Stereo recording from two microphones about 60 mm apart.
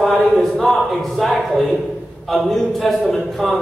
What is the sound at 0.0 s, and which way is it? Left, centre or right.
A man's voice, centre.